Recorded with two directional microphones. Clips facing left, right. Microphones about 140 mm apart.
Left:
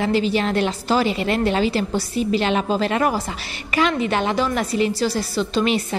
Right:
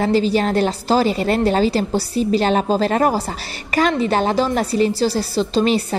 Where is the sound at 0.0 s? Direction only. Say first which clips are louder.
Right 3 dB; 35° right (ahead or behind).